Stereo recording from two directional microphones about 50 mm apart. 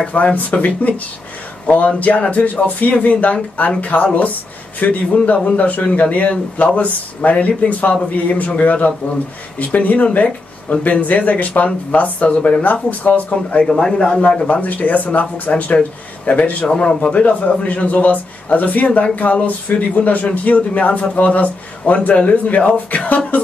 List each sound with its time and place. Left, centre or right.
0.0 s speech: left
13.7 s a man's voice: centre
14.5 s speech: left